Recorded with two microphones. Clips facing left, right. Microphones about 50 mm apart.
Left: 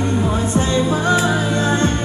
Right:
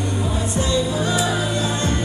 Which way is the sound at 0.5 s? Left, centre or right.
Left.